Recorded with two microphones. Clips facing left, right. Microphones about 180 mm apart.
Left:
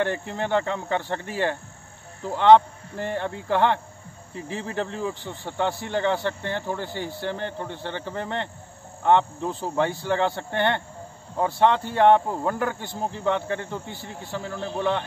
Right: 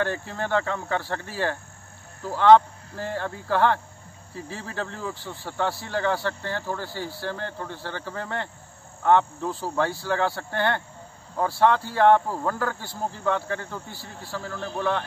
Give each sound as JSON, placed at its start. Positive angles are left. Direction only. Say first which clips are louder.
{"t": 0.0, "sound": "speech", "louder": "left 2 dB", "side_deg": 20}